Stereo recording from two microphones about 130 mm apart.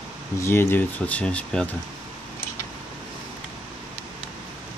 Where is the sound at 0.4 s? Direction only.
15° left (ahead or behind).